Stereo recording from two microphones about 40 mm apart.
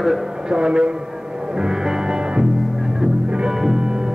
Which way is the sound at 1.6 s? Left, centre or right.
Centre.